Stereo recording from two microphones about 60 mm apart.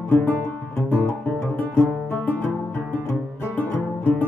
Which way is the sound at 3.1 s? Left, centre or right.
Left.